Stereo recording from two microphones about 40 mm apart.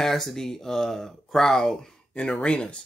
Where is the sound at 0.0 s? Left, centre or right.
Centre.